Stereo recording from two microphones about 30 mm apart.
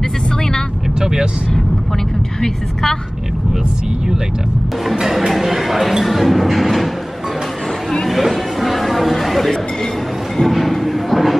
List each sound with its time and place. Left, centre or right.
0.4 s vehicle: left
0.9 s vehicle: centre
2.4 s a woman's voice: centre
5.0 s speech: centre
8.1 s chatter: centre
10.3 s a sound: centre